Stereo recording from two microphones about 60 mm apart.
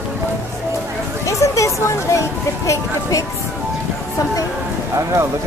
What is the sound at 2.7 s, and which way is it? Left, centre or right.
Music, left.